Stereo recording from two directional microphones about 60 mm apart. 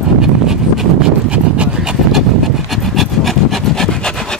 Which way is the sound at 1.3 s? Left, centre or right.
Centre.